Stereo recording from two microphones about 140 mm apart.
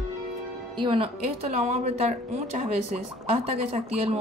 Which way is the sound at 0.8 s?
40° right (ahead or behind).